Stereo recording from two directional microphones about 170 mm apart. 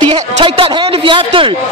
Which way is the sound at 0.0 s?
35° right (ahead or behind).